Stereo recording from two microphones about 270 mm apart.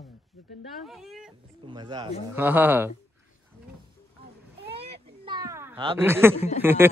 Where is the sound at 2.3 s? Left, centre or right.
Centre.